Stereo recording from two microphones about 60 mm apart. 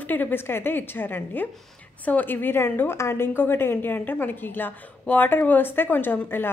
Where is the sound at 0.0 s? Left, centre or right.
Left.